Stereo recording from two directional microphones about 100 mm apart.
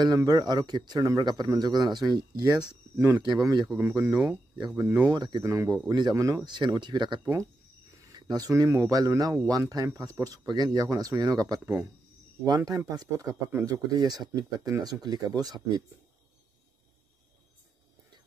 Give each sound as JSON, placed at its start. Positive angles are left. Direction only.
{"t": 0.0, "sound": "a man's voice", "side_deg": -40}
{"t": 2.7, "sound": "speech", "side_deg": -30}
{"t": 3.4, "sound": "a man's voice", "side_deg": -40}
{"t": 5.4, "sound": "a man's voice", "side_deg": -35}
{"t": 8.0, "sound": "a sound", "side_deg": -40}
{"t": 8.6, "sound": "speech", "side_deg": -35}
{"t": 13.7, "sound": "speech", "side_deg": -45}